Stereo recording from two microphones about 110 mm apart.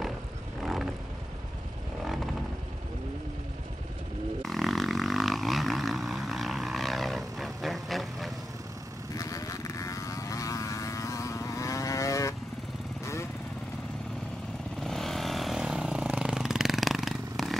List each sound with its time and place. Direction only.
0.6 s vehicle: centre (ahead or behind)
4.4 s a sound: centre (ahead or behind)
9.1 s vehicle: 30° left (ahead or behind)
13.0 s motorcycle: 25° left (ahead or behind)
14.8 s chainsaw: centre (ahead or behind)